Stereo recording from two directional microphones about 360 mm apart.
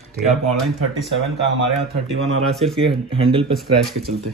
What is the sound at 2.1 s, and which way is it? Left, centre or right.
Speech, right.